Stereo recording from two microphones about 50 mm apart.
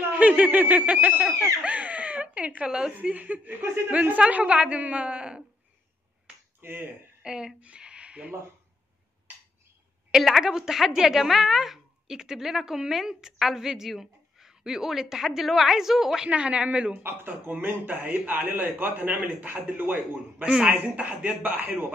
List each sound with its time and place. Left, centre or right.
0.1 s a woman's voice: right
1.6 s a sound: right
3.0 s a woman's voice: right
3.6 s a man's voice: right
3.9 s a woman's voice: right
6.6 s speech: right
7.2 s speech: centre
10.1 s a woman's voice: centre
16.3 s a woman's voice: right
17.6 s a man's voice: right